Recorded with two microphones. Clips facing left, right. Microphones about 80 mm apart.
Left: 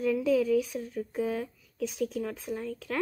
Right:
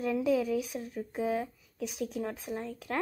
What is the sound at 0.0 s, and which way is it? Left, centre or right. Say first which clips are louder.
A woman's voice: left 3 dB; right.